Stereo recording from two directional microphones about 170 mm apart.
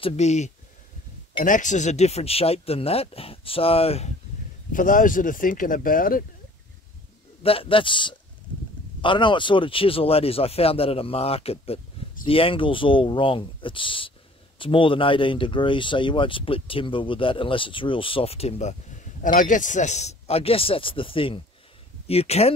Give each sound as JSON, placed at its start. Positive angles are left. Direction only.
{"t": 0.0, "sound": "speech", "side_deg": 40}
{"t": 4.7, "sound": "speech", "side_deg": 50}
{"t": 7.4, "sound": "speech", "side_deg": 30}
{"t": 19.2, "sound": "speech", "side_deg": 50}